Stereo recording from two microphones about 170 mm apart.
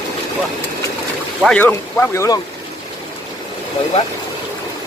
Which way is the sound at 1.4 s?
5° left (ahead or behind).